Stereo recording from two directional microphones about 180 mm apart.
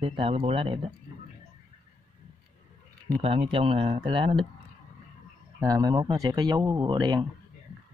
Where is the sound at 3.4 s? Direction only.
30° right (ahead or behind).